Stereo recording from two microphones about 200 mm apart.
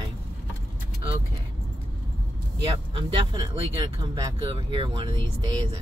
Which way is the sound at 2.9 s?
25° right (ahead or behind).